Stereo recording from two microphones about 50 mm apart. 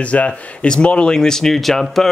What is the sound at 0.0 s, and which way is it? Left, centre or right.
Speech, left.